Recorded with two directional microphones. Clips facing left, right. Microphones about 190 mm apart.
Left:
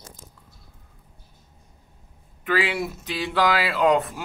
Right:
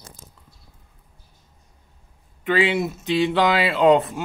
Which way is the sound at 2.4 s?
25° right (ahead or behind).